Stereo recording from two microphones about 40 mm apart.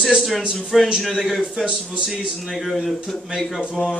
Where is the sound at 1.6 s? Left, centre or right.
Right.